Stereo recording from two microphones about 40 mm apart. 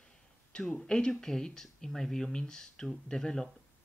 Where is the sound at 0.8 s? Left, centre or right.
Centre.